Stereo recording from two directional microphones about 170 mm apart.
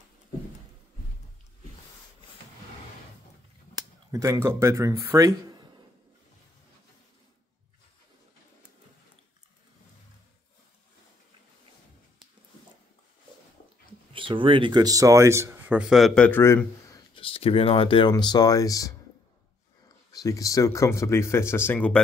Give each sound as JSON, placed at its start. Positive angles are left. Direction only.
{"t": 4.1, "sound": "speech", "side_deg": -20}
{"t": 14.1, "sound": "speech", "side_deg": -30}
{"t": 16.3, "sound": "speech", "side_deg": 15}
{"t": 17.1, "sound": "speech", "side_deg": 35}
{"t": 20.1, "sound": "speech", "side_deg": 20}